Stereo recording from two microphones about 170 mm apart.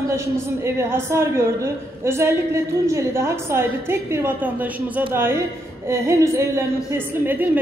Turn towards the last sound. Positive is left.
turn(degrees=-10)  # may be behind; listen again after turning